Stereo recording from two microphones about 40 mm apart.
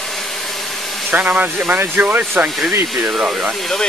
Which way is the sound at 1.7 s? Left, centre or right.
Right.